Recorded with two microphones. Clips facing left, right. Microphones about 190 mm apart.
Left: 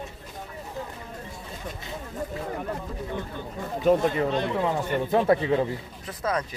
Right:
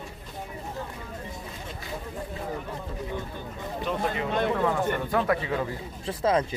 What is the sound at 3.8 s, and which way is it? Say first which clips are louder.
Speech: left 8 dB; 45° left (ahead or behind).